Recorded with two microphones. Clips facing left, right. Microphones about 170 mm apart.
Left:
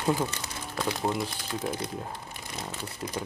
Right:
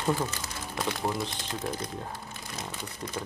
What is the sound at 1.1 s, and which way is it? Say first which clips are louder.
Speech: left 2 dB; 20° left (ahead or behind).